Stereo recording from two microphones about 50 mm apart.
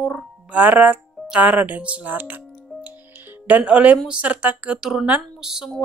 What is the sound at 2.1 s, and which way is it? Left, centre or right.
Speech, right.